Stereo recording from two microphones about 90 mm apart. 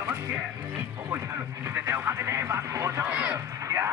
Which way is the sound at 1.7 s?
25° right (ahead or behind).